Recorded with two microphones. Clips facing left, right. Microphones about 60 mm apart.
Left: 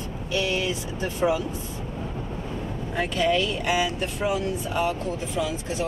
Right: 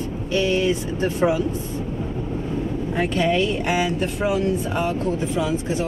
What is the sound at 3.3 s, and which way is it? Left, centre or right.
Speech, right.